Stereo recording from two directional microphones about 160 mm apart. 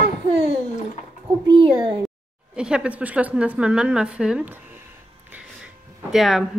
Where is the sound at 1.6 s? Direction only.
30° right (ahead or behind).